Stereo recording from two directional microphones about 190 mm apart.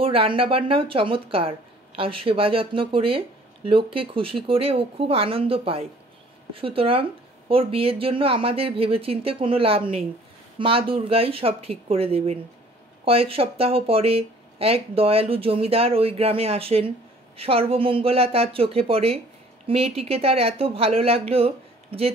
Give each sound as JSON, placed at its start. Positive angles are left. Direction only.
{"t": 0.0, "sound": "speech", "side_deg": -30}